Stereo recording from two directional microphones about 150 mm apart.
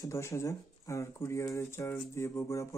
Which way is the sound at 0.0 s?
20° left (ahead or behind).